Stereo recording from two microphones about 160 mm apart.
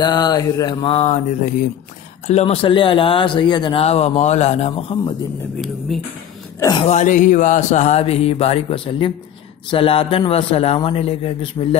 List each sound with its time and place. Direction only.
0.0 s mantra: 25° left (ahead or behind)
0.8 s speech: 40° left (ahead or behind)
6.8 s speech: 45° left (ahead or behind)